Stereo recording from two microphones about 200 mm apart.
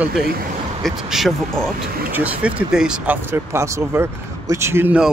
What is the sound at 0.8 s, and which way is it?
Speech, centre (ahead or behind).